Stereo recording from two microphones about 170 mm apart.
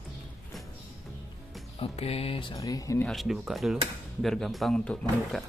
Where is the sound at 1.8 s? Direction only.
35° left (ahead or behind); by 3.0 s 20° left (ahead or behind).